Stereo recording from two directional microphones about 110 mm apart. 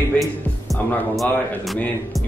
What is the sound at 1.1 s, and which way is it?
Speech, centre (ahead or behind).